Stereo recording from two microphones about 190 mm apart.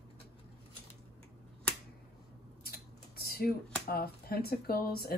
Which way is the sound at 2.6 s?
55° left (ahead or behind).